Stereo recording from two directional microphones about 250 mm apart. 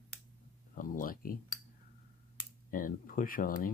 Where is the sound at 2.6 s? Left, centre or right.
Left.